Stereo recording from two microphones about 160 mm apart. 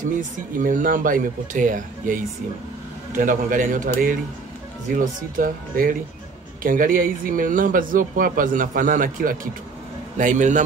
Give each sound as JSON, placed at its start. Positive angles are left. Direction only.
{"t": 0.0, "sound": "a man's voice", "side_deg": -55}